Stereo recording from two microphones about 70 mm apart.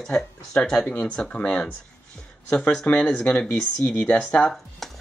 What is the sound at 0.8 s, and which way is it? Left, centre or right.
Speech, left.